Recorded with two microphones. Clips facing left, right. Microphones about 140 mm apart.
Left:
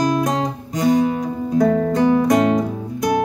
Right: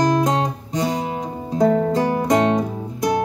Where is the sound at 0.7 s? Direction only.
25° right (ahead or behind).